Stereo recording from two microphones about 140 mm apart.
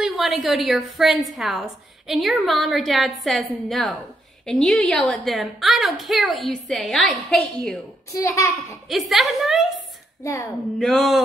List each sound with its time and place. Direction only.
0.0 s a woman's voice: centre (ahead or behind)
8.1 s a child's voice: 20° left (ahead or behind)
8.8 s a woman's voice: centre (ahead or behind)
10.2 s a child's voice: 20° left (ahead or behind)
10.8 s a woman's voice: centre (ahead or behind)